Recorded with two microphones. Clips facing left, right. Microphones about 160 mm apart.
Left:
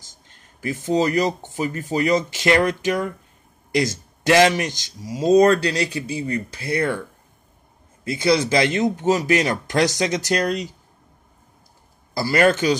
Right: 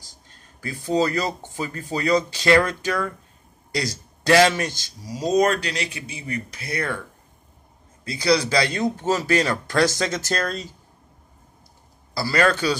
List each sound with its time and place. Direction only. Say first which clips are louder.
0.3 s speech: left 6 dB; 20° left (ahead or behind)
8.0 s speech: left 2 dB; 25° left (ahead or behind)
12.1 s speech: left 3 dB; 25° left (ahead or behind)